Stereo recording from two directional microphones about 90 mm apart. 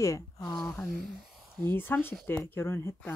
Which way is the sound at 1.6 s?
25° left (ahead or behind).